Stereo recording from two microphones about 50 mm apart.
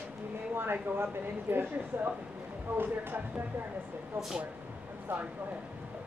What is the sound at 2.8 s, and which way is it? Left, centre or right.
Speech, right.